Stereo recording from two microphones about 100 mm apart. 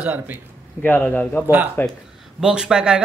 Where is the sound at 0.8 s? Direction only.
15° left (ahead or behind).